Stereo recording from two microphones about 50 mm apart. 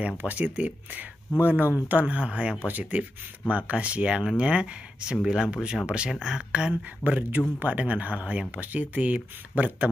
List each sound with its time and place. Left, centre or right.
0.2 s speech: right
7.1 s speech: right